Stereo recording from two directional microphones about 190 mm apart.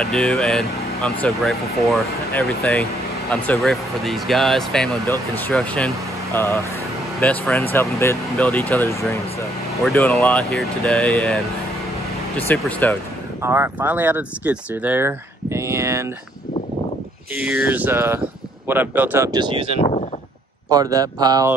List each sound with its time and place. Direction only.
0.0 s speech: 5° left (ahead or behind)
5.0 s speech: 15° left (ahead or behind)
6.3 s speech: 15° left (ahead or behind)
12.4 s speech: 10° left (ahead or behind)
13.4 s speech: 10° right (ahead or behind)
17.4 s speech: 10° right (ahead or behind); by 19.8 s 30° right (ahead or behind)
20.7 s speech: 20° right (ahead or behind)